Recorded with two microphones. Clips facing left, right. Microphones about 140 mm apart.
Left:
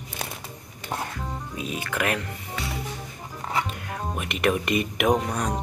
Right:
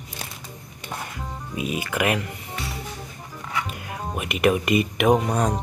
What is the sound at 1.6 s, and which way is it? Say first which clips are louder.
Speech: right 4 dB; 10° right (ahead or behind).